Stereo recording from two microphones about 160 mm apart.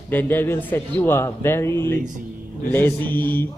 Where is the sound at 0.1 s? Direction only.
10° left (ahead or behind).